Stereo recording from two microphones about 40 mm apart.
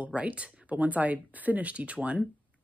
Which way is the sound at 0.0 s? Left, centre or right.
Right.